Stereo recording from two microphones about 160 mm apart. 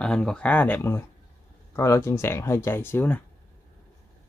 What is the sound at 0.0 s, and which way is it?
Speech, 5° left (ahead or behind).